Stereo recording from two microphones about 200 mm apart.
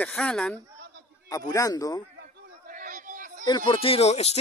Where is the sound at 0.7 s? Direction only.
55° right (ahead or behind).